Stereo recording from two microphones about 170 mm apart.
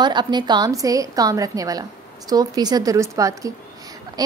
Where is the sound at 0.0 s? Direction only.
25° right (ahead or behind).